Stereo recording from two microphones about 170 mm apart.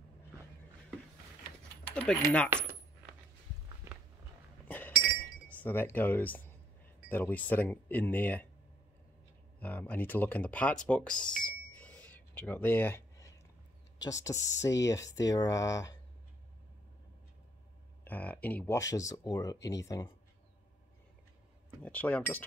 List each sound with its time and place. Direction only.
1.9 s speech: 10° left (ahead or behind)
2.5 s coin: 15° right (ahead or behind)
4.6 s chink: 10° left (ahead or behind)
5.5 s speech: 10° left (ahead or behind)
9.6 s speech: 10° left (ahead or behind)
18.0 s speech: 10° left (ahead or behind)
18.8 s speech: 20° left (ahead or behind)
21.8 s speech: 10° left (ahead or behind)